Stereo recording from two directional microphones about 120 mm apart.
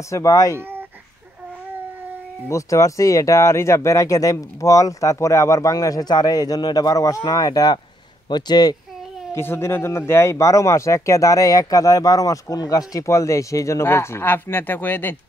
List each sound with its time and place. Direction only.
0.1 s speech: 25° left (ahead or behind)
0.6 s a sound: 15° right (ahead or behind)
2.4 s speech: 25° left (ahead or behind)
9.3 s speech: 20° left (ahead or behind)